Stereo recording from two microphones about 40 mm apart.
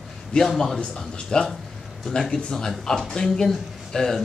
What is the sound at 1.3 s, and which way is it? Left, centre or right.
A man's voice, left.